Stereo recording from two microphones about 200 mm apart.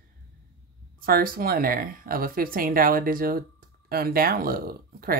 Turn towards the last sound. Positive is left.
turn(degrees=-50)  # may be behind; listen again after turning